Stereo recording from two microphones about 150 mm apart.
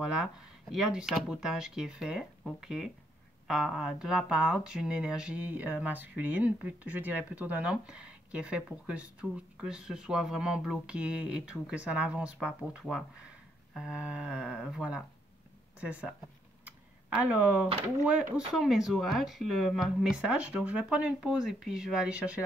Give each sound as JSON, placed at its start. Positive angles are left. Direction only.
{"t": 0.1, "sound": "speech", "side_deg": -5}
{"t": 16.6, "sound": "camera", "side_deg": -10}
{"t": 18.0, "sound": "speech", "side_deg": -10}